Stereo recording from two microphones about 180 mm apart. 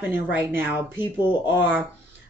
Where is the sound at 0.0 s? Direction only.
10° right (ahead or behind).